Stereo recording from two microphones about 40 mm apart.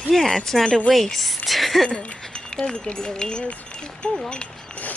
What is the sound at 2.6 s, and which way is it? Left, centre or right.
Speech, centre.